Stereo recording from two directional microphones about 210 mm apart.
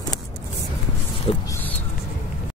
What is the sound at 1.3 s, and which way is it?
Speech, 25° left (ahead or behind).